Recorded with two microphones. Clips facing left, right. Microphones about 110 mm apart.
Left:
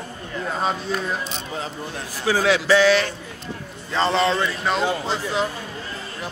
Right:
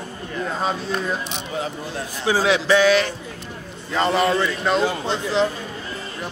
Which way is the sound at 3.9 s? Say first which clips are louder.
Right 1 dB; 30° left (ahead or behind).